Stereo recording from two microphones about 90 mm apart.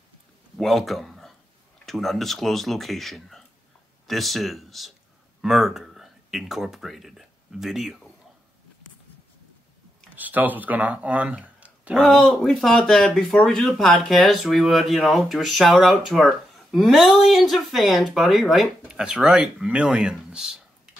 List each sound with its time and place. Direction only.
0.6 s speech: centre (ahead or behind)
10.1 s speech: 20° right (ahead or behind)
12.2 s speech: 5° left (ahead or behind)